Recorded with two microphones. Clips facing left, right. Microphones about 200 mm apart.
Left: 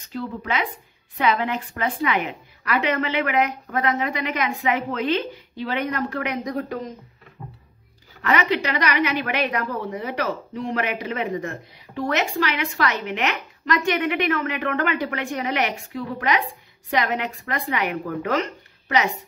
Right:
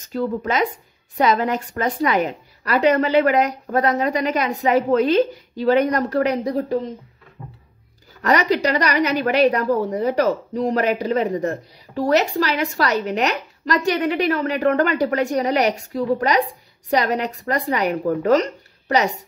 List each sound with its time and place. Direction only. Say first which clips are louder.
0.0 s a woman's voice: right 7 dB; 45° right (ahead or behind)
8.2 s a woman's voice: right 4 dB; 40° right (ahead or behind)